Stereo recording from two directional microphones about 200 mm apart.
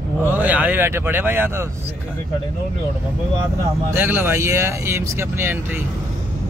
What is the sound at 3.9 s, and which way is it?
Speech, 10° right (ahead or behind).